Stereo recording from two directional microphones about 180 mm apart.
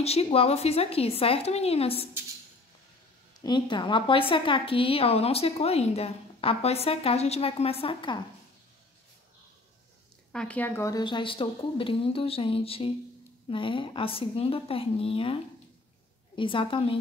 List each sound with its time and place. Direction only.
0.0 s a woman's voice: 35° left (ahead or behind)
3.4 s a woman's voice: 25° left (ahead or behind)
10.3 s a woman's voice: 5° left (ahead or behind); by 15.3 s 30° left (ahead or behind)
16.3 s a woman's voice: 30° left (ahead or behind)